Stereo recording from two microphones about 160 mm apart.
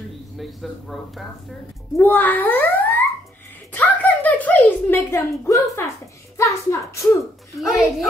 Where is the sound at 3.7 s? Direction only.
10° left (ahead or behind).